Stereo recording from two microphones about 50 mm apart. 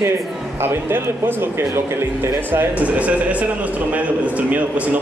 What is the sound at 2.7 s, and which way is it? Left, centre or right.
A man's voice, right.